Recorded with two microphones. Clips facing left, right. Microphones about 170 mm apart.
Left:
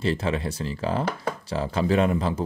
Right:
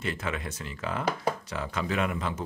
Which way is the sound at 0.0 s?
30° left (ahead or behind).